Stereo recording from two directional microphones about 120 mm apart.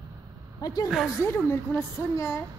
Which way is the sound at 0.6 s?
35° left (ahead or behind).